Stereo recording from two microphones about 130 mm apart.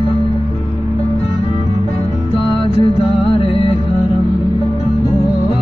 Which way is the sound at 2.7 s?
45° left (ahead or behind).